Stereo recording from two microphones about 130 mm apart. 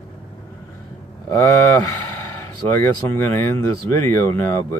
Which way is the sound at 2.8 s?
20° left (ahead or behind).